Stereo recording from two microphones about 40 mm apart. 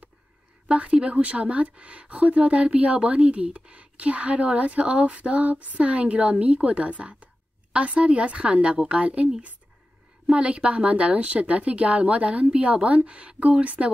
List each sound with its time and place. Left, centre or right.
0.7 s a woman's voice: right
10.3 s speech: right